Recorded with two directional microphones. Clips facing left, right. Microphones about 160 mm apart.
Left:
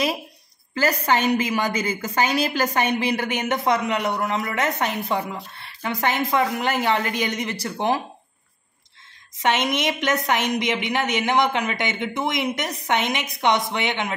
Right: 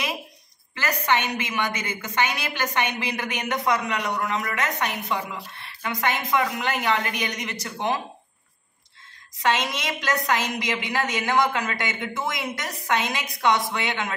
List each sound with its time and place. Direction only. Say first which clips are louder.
0.7 s a woman's voice: left 3 dB; 35° left (ahead or behind)
9.4 s a woman's voice: left 3 dB; 20° left (ahead or behind)